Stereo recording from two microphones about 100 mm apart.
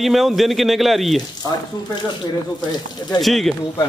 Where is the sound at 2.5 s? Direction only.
45° left (ahead or behind).